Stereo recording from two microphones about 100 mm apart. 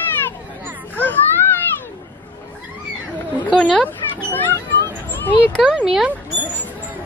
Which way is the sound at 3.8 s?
20° left (ahead or behind).